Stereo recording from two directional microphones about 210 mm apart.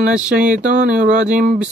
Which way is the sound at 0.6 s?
35° right (ahead or behind).